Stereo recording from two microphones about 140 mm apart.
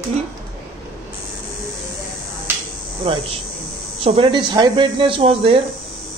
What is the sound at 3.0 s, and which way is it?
Speech, 40° right (ahead or behind).